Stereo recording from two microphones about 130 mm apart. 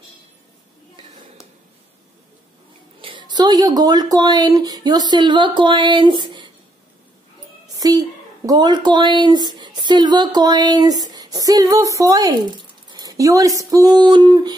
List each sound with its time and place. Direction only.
3.0 s speech: 40° right (ahead or behind)
7.8 s speech: 30° right (ahead or behind)